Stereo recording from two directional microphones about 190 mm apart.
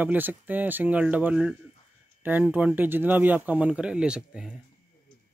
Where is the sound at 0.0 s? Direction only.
10° right (ahead or behind).